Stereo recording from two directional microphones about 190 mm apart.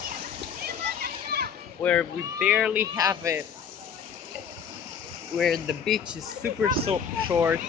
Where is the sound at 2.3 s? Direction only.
5° right (ahead or behind).